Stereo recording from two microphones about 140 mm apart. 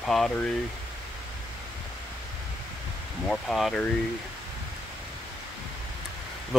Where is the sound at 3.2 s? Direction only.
5° left (ahead or behind).